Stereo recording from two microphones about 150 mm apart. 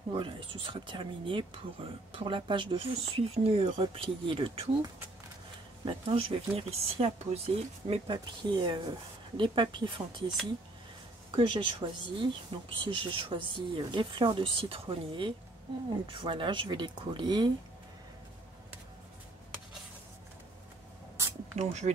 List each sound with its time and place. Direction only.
0.1 s speech: 35° right (ahead or behind)
5.9 s speech: 40° right (ahead or behind)
11.3 s speech: 35° right (ahead or behind)
21.5 s speech: 45° right (ahead or behind)